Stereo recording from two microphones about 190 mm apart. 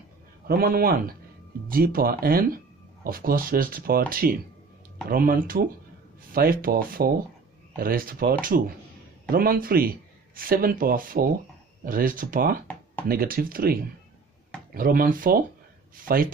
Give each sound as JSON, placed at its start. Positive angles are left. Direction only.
{"t": 0.5, "sound": "a man's voice", "side_deg": -50}